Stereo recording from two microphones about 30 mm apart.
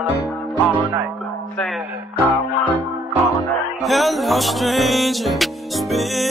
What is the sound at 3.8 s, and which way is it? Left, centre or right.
Music, centre.